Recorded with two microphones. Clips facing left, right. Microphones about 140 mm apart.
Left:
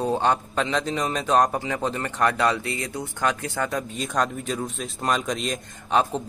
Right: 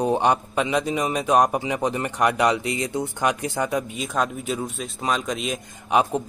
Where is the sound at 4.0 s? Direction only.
5° right (ahead or behind).